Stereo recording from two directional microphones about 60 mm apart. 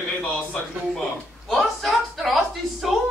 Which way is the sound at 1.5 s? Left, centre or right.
Centre.